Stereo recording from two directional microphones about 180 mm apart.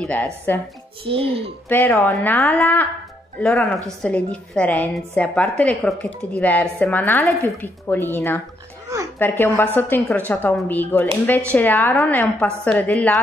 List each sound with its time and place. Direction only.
0.0 s a woman's voice: 10° left (ahead or behind)
1.0 s a child's voice: 30° right (ahead or behind)
1.7 s a woman's voice: 10° left (ahead or behind)
8.8 s a sound: 20° right (ahead or behind)
9.4 s a woman's voice: 10° left (ahead or behind)